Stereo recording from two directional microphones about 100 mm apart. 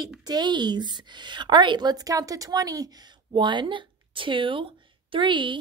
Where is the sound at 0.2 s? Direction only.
45° right (ahead or behind).